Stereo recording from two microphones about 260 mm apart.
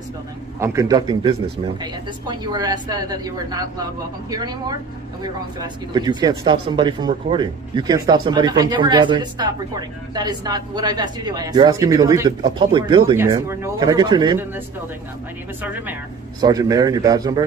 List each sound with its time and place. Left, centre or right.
0.6 s speech: centre
15.6 s speech: centre